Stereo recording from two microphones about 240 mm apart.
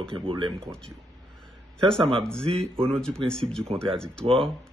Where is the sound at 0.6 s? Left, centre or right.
Centre.